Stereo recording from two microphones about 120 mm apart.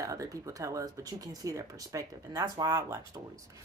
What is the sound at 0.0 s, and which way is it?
Speech, 30° right (ahead or behind).